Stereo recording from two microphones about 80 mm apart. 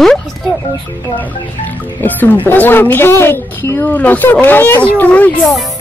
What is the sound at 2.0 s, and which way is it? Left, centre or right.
A woman's voice, left.